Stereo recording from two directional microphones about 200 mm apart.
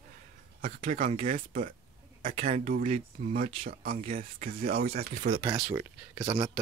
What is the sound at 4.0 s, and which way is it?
Speech, 40° right (ahead or behind).